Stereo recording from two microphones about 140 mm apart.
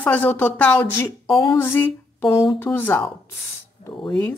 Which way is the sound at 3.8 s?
50° left (ahead or behind).